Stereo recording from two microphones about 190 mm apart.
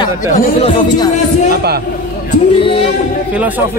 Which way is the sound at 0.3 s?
35° left (ahead or behind).